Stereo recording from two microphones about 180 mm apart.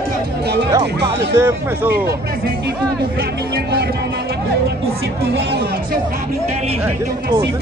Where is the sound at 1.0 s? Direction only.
15° right (ahead or behind).